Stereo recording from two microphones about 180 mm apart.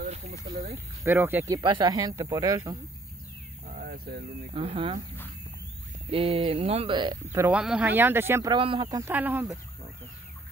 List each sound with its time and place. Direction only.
0.0 s a sound: 40° right (ahead or behind)
1.0 s speech: 10° right (ahead or behind)
3.6 s a sound: 40° right (ahead or behind)
3.9 s speech: 60° right (ahead or behind)
4.6 s speech: 30° right (ahead or behind)
6.0 s speech: 30° right (ahead or behind)
7.4 s speech: 5° right (ahead or behind)
8.5 s speech: 30° right (ahead or behind)
8.9 s speech: 10° right (ahead or behind)